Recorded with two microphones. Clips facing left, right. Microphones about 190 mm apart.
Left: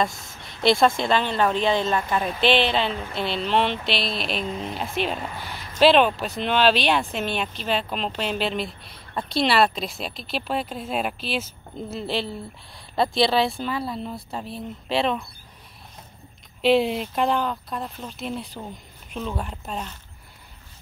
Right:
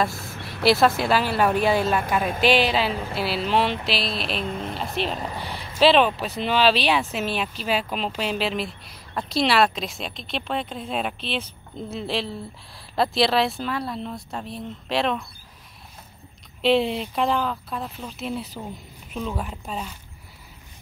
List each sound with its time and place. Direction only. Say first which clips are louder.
0.2 s a sound: right 4 dB; 60° right (ahead or behind)
0.7 s a woman's voice: even; 5° right (ahead or behind)
5.2 s speech: right 2 dB; 30° right (ahead or behind)
5.8 s a woman's voice: left 1 dB; centre (ahead or behind)
16.6 s a woman's voice: left 1 dB; centre (ahead or behind)